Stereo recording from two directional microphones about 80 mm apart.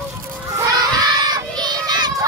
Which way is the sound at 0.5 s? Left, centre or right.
Right.